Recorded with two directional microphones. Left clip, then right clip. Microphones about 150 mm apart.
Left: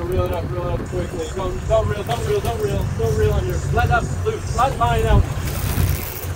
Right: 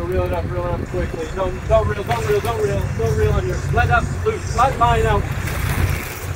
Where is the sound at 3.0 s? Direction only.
Centre (ahead or behind).